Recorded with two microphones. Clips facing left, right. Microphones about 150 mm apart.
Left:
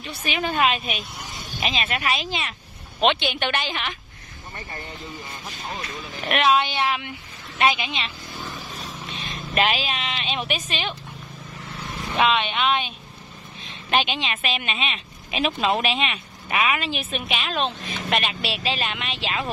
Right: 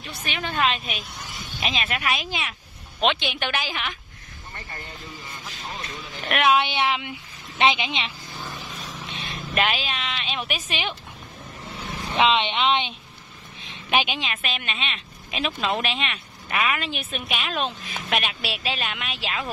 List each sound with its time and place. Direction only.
0.2 s a woman's voice: 10° left (ahead or behind)
6.2 s speech: centre (ahead or behind)
6.6 s a woman's voice: 15° right (ahead or behind)
9.1 s vehicle: 5° right (ahead or behind)
9.7 s speech: centre (ahead or behind)
10.7 s speech: 15° right (ahead or behind)
12.2 s speech: 25° right (ahead or behind)
13.8 s speech: 5° right (ahead or behind)